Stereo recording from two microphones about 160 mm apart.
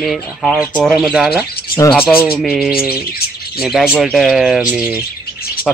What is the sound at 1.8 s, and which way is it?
Speech, 20° left (ahead or behind).